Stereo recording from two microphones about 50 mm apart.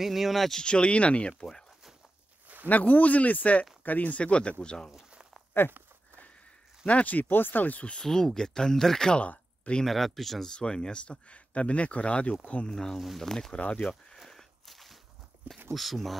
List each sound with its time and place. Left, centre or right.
0.0 s speech: centre
0.6 s speech: centre
2.4 s a sound: right
2.7 s speech: left; by 4.9 s centre
6.9 s speech: left
7.9 s speech: centre
9.2 s a sound: left
9.8 s speech: centre
10.5 s speech: centre
12.7 s speech: centre
13.6 s speech: left
13.8 s a sound: centre
15.7 s speech: centre